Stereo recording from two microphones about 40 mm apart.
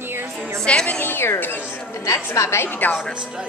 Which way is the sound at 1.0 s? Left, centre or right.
Left.